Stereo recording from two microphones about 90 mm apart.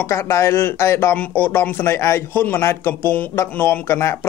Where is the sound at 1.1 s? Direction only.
20° left (ahead or behind).